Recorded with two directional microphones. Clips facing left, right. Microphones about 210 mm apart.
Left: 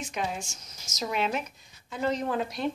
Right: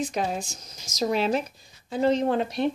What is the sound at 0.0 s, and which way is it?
Speech, 35° right (ahead or behind).